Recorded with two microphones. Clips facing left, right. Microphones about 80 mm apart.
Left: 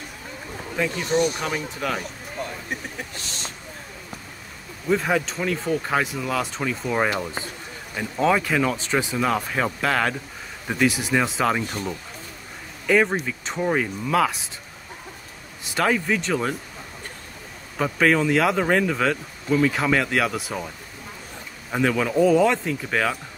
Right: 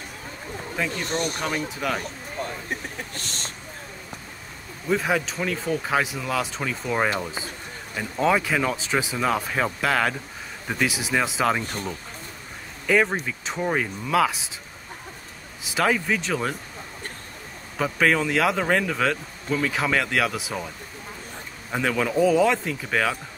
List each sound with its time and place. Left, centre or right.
0.8 s speech: centre
3.2 s speech: right
4.8 s speech: centre
12.8 s speech: centre
15.6 s speech: centre
17.7 s speech: centre
21.7 s speech: centre